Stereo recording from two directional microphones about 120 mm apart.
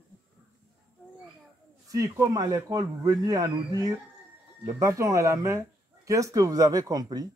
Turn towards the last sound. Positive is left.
turn(degrees=-30)  # may be behind; listen again after turning